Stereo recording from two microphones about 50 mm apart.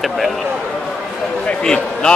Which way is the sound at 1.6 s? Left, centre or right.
Centre.